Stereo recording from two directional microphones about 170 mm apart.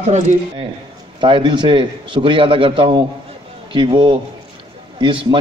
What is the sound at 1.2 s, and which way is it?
A man's voice, 30° right (ahead or behind).